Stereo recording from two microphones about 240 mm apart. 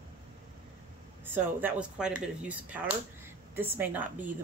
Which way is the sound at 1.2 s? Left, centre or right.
Centre.